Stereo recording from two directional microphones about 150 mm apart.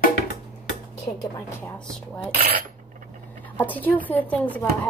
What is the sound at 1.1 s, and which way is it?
Speech, 20° left (ahead or behind).